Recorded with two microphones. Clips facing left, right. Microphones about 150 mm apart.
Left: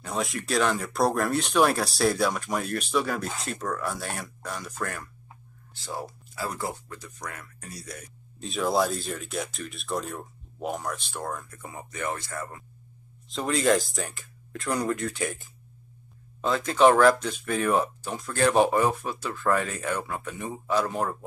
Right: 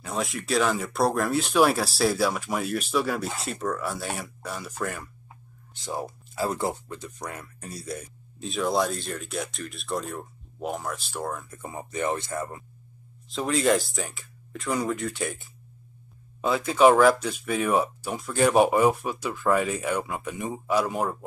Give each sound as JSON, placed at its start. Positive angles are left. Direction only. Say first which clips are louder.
{"t": 0.0, "sound": "speech", "louder": "even", "side_deg": 0}
{"t": 5.8, "sound": "speech", "louder": "right 3 dB", "side_deg": -20}
{"t": 8.4, "sound": "speech", "louder": "even", "side_deg": 0}
{"t": 11.5, "sound": "speech", "louder": "right 5 dB", "side_deg": -25}
{"t": 13.3, "sound": "speech", "louder": "even", "side_deg": 0}